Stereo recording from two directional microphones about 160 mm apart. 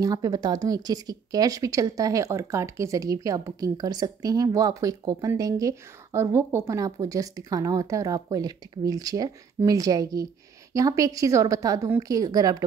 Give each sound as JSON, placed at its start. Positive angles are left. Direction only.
{"t": 0.0, "sound": "speech", "side_deg": -25}